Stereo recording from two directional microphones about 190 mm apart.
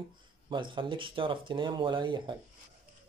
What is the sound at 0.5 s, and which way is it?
Speech, 25° right (ahead or behind).